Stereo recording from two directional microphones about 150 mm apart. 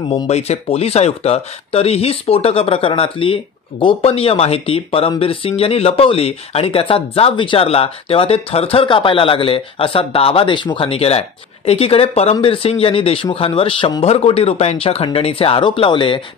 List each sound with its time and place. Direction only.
0.1 s speech: 45° left (ahead or behind)